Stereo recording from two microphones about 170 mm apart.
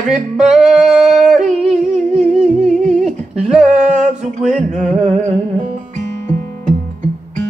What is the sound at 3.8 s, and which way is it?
Music, 45° right (ahead or behind).